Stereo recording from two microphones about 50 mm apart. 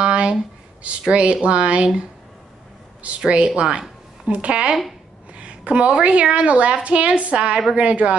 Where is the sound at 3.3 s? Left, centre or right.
Centre.